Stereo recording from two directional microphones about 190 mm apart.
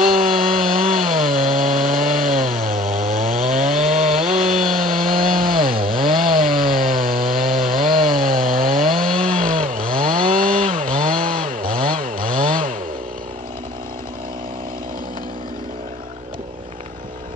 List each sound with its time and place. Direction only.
0.0 s chainsaw: 45° right (ahead or behind)